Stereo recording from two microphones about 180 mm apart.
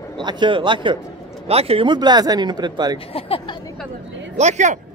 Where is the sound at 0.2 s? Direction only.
25° right (ahead or behind).